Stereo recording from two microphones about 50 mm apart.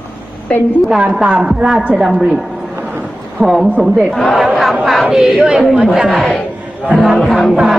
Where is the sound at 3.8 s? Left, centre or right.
Centre.